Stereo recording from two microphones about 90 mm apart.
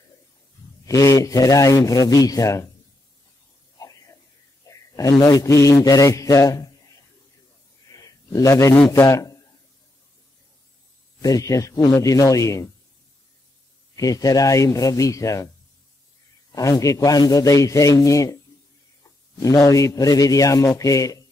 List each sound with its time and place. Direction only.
0.8 s a man's voice: 40° left (ahead or behind)
3.7 s a sound: 40° left (ahead or behind)
4.6 s a man's voice: 40° left (ahead or behind)
7.9 s a sound: 40° left (ahead or behind)
8.9 s a man's voice: 35° left (ahead or behind)
11.1 s a man's voice: 40° left (ahead or behind)
13.9 s a man's voice: 40° left (ahead or behind)
16.5 s a man's voice: 40° left (ahead or behind)